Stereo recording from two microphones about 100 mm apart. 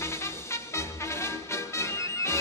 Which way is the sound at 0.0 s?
25° left (ahead or behind).